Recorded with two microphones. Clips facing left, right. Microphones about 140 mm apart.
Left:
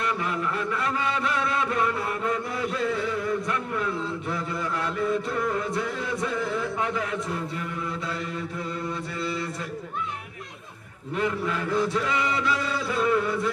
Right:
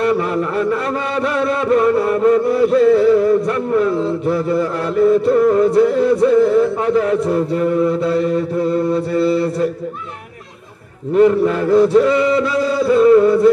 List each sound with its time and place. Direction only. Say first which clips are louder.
0.2 s chant: right 10 dB; 40° right (ahead or behind)
11.1 s chant: right 15 dB; 35° right (ahead or behind)